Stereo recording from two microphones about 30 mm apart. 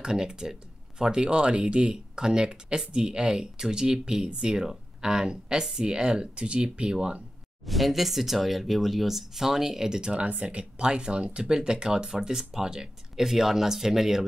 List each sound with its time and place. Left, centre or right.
0.0 s speech: right
7.6 s speech: centre; by 10.1 s right
10.1 s speech: right; by 14.2 s centre